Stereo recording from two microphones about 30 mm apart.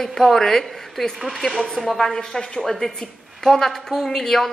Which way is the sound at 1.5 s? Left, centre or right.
Centre.